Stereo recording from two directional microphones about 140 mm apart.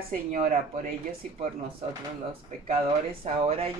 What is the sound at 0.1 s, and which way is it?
Speech, 75° right (ahead or behind).